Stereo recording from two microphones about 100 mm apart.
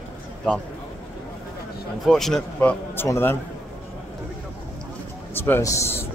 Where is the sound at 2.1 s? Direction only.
5° left (ahead or behind).